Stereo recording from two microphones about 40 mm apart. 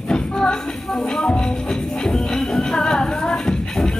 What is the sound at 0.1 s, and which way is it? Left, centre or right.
Music, left.